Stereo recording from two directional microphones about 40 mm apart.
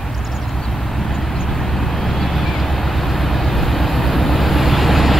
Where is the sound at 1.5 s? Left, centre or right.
Centre.